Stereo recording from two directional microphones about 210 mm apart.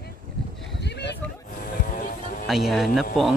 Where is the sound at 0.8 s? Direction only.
55° left (ahead or behind).